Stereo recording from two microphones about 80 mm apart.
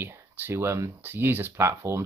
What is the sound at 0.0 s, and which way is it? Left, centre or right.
Speech, right.